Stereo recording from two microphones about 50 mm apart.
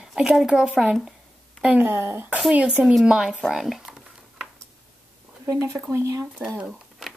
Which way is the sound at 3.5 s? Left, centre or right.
Centre.